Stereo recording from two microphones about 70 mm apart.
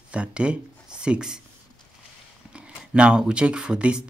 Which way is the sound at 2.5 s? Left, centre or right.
Centre.